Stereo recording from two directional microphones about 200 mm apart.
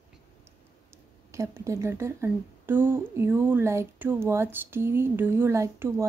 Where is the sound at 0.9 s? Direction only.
15° right (ahead or behind).